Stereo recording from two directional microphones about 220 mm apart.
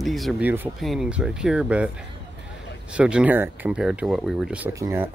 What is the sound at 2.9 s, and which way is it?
Speech, 5° right (ahead or behind).